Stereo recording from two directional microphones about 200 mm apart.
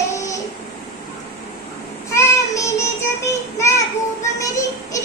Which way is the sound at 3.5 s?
15° left (ahead or behind).